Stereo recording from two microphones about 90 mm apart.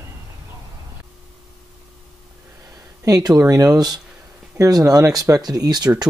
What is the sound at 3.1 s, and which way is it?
Speech, 45° right (ahead or behind).